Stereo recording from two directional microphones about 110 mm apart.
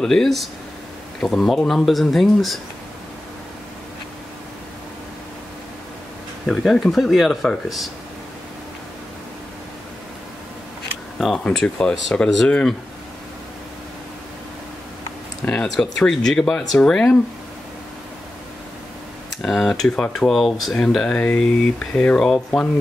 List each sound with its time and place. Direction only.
0.0 s speech: 5° left (ahead or behind)
6.4 s speech: 5° left (ahead or behind)
11.3 s speech: 10° left (ahead or behind)
15.4 s speech: 5° left (ahead or behind)
19.4 s speech: centre (ahead or behind)